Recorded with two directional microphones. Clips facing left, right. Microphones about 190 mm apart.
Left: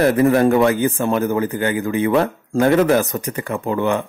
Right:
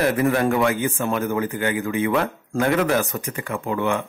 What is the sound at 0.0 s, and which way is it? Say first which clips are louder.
A man's voice: left 6 dB; 35° left (ahead or behind).